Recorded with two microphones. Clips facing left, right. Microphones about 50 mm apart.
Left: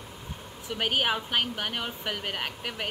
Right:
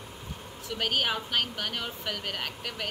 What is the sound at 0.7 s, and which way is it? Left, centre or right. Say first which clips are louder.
Speech: left 2 dB; centre.